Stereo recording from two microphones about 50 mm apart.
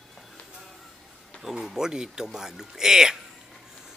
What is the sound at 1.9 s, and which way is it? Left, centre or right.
Speech, centre.